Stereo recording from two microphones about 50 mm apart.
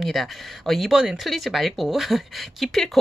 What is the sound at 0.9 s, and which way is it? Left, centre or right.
Speech, centre.